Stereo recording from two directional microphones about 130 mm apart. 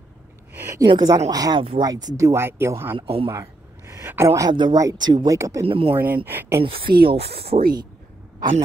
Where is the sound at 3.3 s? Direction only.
20° right (ahead or behind).